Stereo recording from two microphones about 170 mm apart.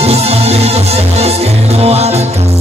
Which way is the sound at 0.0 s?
40° right (ahead or behind).